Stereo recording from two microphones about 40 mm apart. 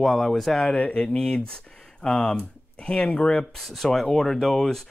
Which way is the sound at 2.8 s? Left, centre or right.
Left.